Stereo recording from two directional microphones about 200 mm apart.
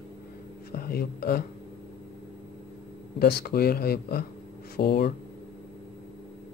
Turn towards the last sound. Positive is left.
turn(degrees=55)  # may be behind; listen again after turning